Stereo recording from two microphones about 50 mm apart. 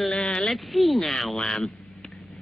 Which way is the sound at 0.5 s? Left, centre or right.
Centre.